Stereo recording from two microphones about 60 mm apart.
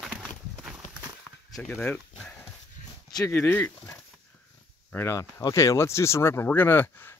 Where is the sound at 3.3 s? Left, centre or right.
Left.